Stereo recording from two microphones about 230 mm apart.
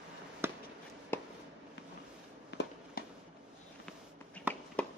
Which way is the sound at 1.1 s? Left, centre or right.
Centre.